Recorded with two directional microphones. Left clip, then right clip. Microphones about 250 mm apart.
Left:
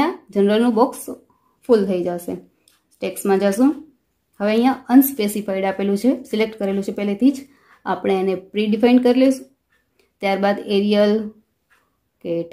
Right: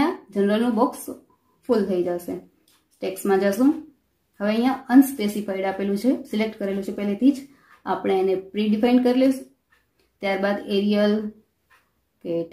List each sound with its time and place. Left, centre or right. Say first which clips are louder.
0.0 s speech: left 4 dB; left
12.2 s speech: left 3 dB; left